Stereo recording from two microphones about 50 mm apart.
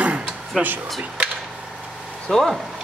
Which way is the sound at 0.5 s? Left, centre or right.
Centre.